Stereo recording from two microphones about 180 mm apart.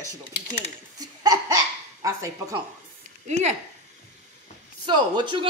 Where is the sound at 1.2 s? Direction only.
20° right (ahead or behind).